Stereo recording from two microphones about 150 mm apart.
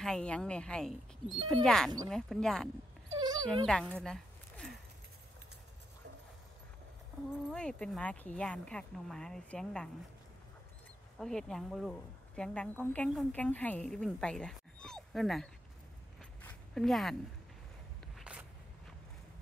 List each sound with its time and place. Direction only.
0.0 s a woman's voice: 5° left (ahead or behind)
3.1 s dog: 30° right (ahead or behind)
3.6 s speech: 5° left (ahead or behind)
7.5 s a woman's voice: 5° left (ahead or behind)
11.1 s a woman's voice: 5° left (ahead or behind)
16.2 s zipper: 5° left (ahead or behind)
18.0 s a sound: 5° right (ahead or behind)